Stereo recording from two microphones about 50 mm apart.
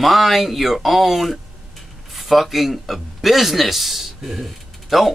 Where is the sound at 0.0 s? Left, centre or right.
Centre.